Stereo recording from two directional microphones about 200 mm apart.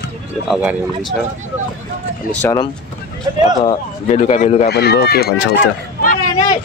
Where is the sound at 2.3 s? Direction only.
10° left (ahead or behind).